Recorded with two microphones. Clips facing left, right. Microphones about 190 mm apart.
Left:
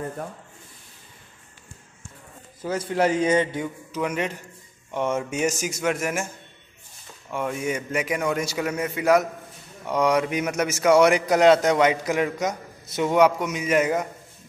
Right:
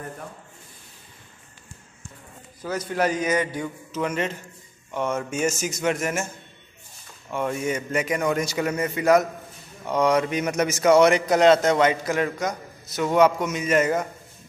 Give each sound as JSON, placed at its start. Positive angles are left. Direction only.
{"t": 2.6, "sound": "a man's voice", "side_deg": 25}
{"t": 3.6, "sound": "a man's voice", "side_deg": 10}